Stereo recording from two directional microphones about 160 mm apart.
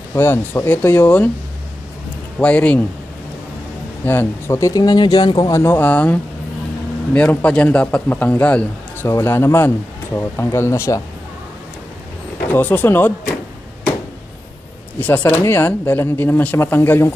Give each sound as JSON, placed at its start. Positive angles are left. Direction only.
{"t": 0.1, "sound": "a man's voice", "side_deg": 15}
{"t": 2.3, "sound": "a man's voice", "side_deg": 10}
{"t": 4.0, "sound": "a man's voice", "side_deg": 15}
{"t": 7.2, "sound": "a man's voice", "side_deg": 5}
{"t": 12.5, "sound": "a man's voice", "side_deg": 10}
{"t": 15.0, "sound": "a man's voice", "side_deg": 10}